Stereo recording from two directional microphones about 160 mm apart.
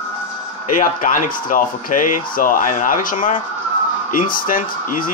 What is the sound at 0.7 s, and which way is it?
Speech, 55° left (ahead or behind).